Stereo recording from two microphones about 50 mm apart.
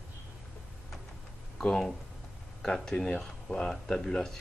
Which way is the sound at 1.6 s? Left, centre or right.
Centre.